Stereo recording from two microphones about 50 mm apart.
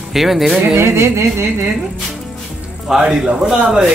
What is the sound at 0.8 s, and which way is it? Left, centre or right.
Music, right.